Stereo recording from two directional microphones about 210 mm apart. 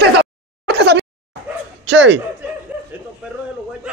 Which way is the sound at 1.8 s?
55° right (ahead or behind).